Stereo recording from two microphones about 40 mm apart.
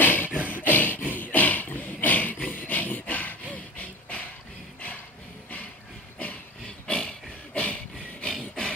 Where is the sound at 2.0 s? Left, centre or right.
Left.